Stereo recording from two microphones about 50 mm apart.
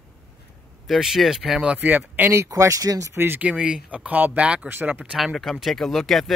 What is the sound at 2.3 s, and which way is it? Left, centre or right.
Speech, right.